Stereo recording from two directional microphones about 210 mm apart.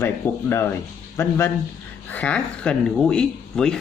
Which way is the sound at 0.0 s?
10° left (ahead or behind).